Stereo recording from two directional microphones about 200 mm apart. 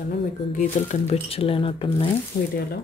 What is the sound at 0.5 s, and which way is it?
Speech, 35° left (ahead or behind).